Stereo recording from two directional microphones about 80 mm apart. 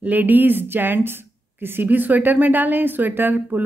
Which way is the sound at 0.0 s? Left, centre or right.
Right.